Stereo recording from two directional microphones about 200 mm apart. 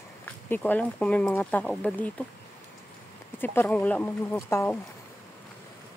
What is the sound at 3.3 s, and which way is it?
Speech, 10° left (ahead or behind).